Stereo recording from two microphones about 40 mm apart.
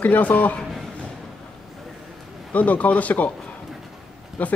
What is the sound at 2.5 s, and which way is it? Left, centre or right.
Speech, left.